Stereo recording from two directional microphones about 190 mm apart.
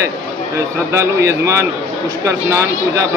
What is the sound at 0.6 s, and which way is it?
A man's voice, 15° right (ahead or behind).